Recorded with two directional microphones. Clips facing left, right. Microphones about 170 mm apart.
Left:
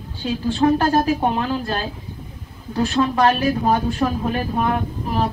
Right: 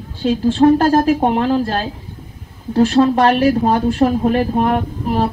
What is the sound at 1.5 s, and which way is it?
Speech, 45° right (ahead or behind).